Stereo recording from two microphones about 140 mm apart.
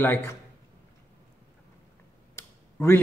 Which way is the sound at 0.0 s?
20° left (ahead or behind).